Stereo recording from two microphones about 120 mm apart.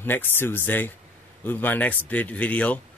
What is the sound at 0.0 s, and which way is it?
A man's voice, 15° left (ahead or behind).